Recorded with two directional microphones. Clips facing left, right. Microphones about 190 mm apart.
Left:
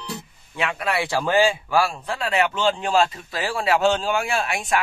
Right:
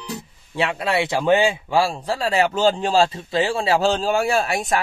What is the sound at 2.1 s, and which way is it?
Speech, 35° right (ahead or behind).